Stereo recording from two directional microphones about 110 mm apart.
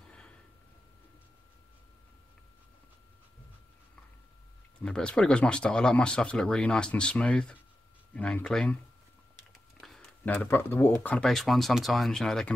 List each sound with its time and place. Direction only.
4.8 s speech: 5° left (ahead or behind)
9.8 s a sound: centre (ahead or behind)
10.2 s speech: 15° left (ahead or behind)
11.2 s speech: centre (ahead or behind)